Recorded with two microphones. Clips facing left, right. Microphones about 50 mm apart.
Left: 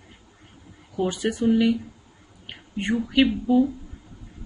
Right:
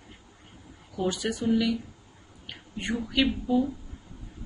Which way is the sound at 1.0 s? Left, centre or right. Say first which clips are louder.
Left 5 dB; left.